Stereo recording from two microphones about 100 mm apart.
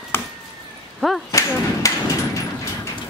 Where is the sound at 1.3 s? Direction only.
35° left (ahead or behind).